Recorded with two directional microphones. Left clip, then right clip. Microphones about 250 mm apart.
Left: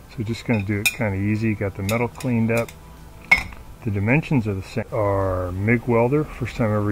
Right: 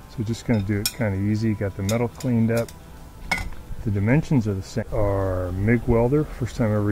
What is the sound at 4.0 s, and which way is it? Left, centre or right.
Speech, centre.